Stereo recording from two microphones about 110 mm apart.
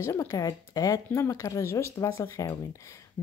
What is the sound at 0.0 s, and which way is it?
Speech, 25° left (ahead or behind).